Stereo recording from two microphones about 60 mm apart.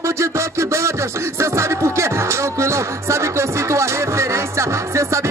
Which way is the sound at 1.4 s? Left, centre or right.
Right.